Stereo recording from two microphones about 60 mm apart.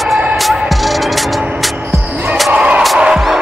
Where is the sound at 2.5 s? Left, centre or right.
Centre.